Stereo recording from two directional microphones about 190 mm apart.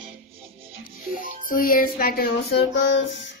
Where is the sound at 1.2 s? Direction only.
45° left (ahead or behind); by 3.0 s 65° left (ahead or behind).